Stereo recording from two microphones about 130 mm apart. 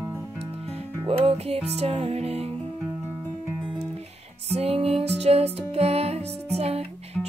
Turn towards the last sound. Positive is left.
turn(degrees=-55)  # may be behind; listen again after turning